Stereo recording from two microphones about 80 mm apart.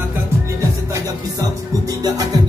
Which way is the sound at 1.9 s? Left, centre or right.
Right.